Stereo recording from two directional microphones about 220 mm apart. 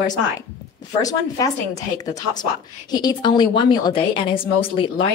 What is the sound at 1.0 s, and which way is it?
A woman's voice, 15° left (ahead or behind).